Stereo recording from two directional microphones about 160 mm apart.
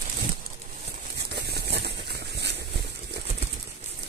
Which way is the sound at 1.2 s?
90° right.